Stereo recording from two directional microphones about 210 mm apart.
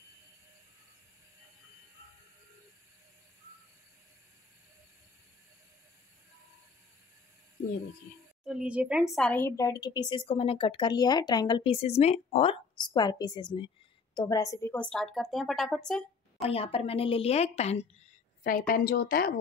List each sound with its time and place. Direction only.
8.5 s a woman's voice: 5° right (ahead or behind)
16.3 s speech: 30° left (ahead or behind)
18.4 s a woman's voice: 40° left (ahead or behind)